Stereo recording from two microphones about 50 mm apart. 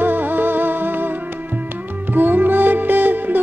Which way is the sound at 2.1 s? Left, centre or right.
Right.